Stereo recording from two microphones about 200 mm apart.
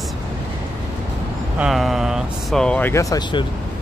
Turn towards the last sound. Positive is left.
turn(degrees=20)  # may be behind; listen again after turning